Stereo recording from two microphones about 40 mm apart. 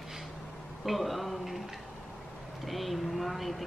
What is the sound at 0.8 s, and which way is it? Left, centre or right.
Speech, centre.